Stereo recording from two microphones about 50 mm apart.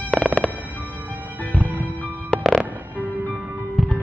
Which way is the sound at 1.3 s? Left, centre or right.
Left.